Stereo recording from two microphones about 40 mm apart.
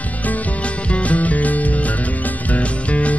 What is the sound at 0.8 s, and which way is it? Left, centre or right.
Music, left.